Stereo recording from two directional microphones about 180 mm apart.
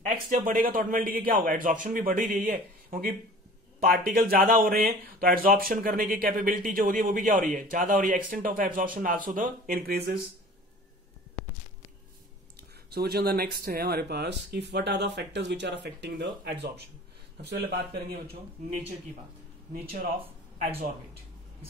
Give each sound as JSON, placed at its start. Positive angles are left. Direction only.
{"t": 0.0, "sound": "speech", "side_deg": -45}
{"t": 12.9, "sound": "speech", "side_deg": -60}
{"t": 19.7, "sound": "speech", "side_deg": -55}